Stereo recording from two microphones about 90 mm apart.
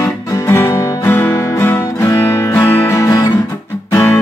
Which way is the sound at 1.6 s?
25° left (ahead or behind).